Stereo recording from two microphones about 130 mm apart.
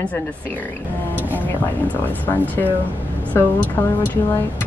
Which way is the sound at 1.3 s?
15° left (ahead or behind).